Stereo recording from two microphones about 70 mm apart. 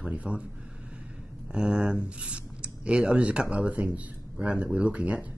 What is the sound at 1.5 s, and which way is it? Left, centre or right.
Speech, centre.